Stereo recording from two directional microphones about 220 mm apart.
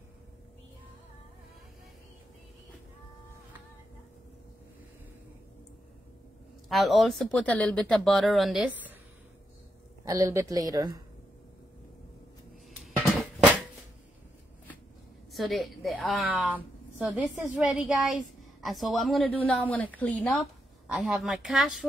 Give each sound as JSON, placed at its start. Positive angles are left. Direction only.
{"t": 6.7, "sound": "a woman's voice", "side_deg": 0}
{"t": 10.0, "sound": "a woman's voice", "side_deg": -15}
{"t": 12.8, "sound": "a sound", "side_deg": 0}
{"t": 15.3, "sound": "a woman's voice", "side_deg": 0}